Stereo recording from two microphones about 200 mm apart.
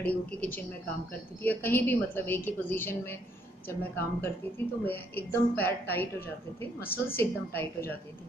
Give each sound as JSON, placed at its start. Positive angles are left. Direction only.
{"t": 0.0, "sound": "a woman's voice", "side_deg": 5}
{"t": 6.8, "sound": "a woman's voice", "side_deg": 50}
{"t": 7.2, "sound": "a woman's voice", "side_deg": 10}